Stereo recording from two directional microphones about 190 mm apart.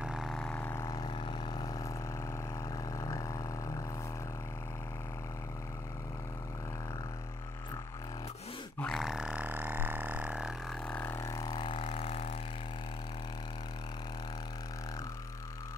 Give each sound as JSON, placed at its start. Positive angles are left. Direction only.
{"t": 0.0, "sound": "vehicle", "side_deg": 0}
{"t": 2.9, "sound": "a sound", "side_deg": 15}
{"t": 8.7, "sound": "grunt", "side_deg": 5}
{"t": 10.9, "sound": "vehicle", "side_deg": 10}